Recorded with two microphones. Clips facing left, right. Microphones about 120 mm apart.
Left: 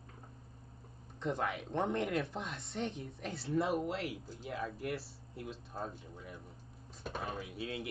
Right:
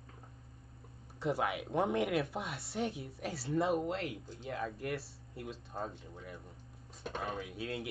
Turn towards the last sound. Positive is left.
turn(degrees=0)  # may be behind; listen again after turning